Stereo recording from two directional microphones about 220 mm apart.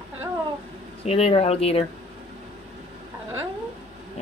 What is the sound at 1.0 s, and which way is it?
Speech, 25° left (ahead or behind).